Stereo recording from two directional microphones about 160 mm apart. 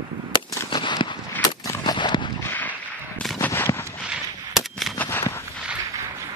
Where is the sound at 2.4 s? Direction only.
10° left (ahead or behind).